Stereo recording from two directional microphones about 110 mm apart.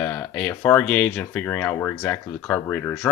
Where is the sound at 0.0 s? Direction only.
15° left (ahead or behind).